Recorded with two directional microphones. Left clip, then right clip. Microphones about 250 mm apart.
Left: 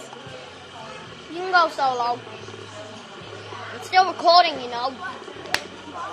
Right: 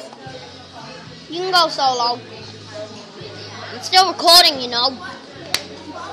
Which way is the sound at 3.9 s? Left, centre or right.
Right.